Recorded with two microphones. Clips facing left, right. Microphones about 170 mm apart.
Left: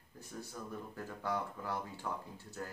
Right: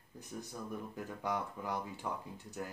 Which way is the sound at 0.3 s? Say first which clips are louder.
Right 2 dB; 15° right (ahead or behind).